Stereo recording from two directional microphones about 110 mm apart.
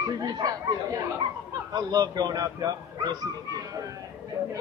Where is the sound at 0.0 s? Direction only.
35° right (ahead or behind).